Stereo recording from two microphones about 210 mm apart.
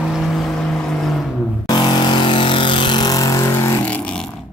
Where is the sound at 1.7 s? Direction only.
20° left (ahead or behind).